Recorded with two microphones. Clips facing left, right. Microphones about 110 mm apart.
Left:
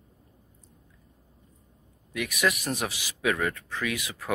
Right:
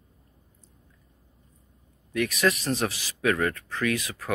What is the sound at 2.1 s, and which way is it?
Speech, 10° left (ahead or behind).